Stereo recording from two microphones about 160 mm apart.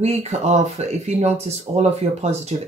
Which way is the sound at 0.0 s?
40° right (ahead or behind).